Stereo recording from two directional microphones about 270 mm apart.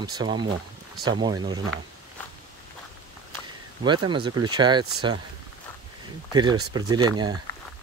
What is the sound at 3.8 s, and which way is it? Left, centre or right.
Speech, centre.